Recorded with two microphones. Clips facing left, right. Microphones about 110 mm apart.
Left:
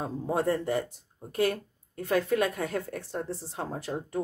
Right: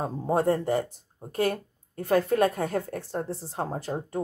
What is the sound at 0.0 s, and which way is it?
Speech, 40° right (ahead or behind).